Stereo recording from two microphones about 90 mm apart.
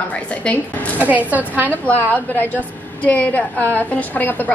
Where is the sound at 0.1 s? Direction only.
15° left (ahead or behind).